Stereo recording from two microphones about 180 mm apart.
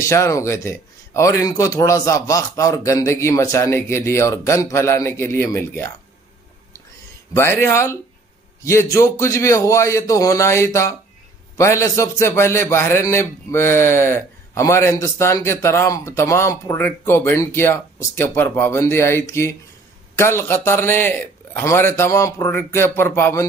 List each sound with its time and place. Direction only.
0.0 s a man's voice: 15° left (ahead or behind)
7.3 s a man's voice: 15° left (ahead or behind)